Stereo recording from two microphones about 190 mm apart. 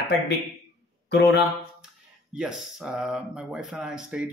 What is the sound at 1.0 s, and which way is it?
Speech, 60° left (ahead or behind).